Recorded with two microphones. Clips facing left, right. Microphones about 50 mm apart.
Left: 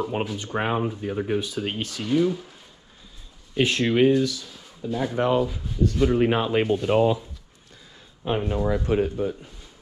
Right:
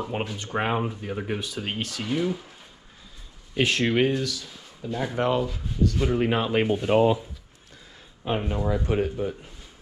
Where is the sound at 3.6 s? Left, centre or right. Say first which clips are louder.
Left 3 dB; right.